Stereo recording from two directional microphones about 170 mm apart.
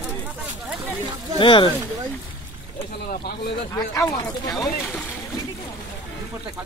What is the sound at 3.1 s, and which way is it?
Speech, 65° left (ahead or behind).